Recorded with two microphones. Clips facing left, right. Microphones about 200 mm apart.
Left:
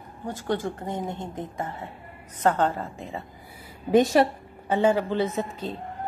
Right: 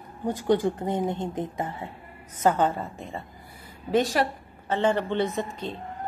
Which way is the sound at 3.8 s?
20° left (ahead or behind).